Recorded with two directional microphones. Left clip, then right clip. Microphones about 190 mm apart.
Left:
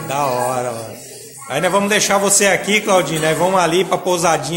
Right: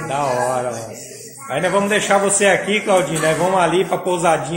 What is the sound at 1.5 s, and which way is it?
A man's voice, 15° left (ahead or behind).